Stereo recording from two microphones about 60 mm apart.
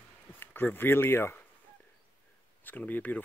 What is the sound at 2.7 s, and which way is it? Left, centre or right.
Speech, left.